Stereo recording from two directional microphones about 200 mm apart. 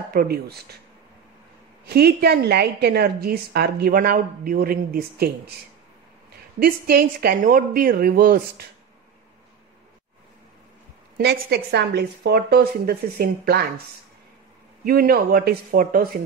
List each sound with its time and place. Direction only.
0.1 s a woman's voice: 50° right (ahead or behind)
1.9 s a woman's voice: 55° right (ahead or behind)
6.6 s a woman's voice: 50° right (ahead or behind)
11.1 s a woman's voice: 55° right (ahead or behind)
14.9 s a woman's voice: 50° right (ahead or behind)